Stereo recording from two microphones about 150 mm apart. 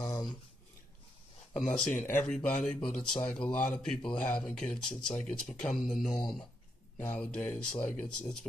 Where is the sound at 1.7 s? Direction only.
5° left (ahead or behind).